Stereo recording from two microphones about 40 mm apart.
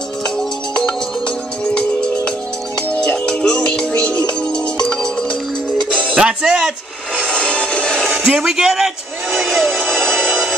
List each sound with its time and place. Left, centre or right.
0.4 s music: centre
6.1 s speech: right
7.2 s music: left
8.2 s music: centre
9.8 s music: centre